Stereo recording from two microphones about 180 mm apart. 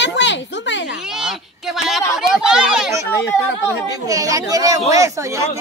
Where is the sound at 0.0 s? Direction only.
85° left.